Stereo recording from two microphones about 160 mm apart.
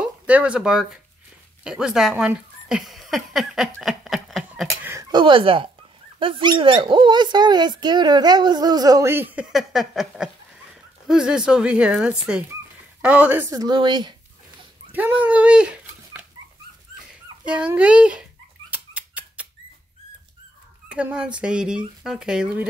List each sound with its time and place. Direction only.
0.3 s speech: 10° right (ahead or behind)
5.1 s speech: 30° right (ahead or behind)
14.9 s speech: 10° right (ahead or behind)
18.7 s dog: 10° right (ahead or behind)
20.9 s speech: 5° right (ahead or behind)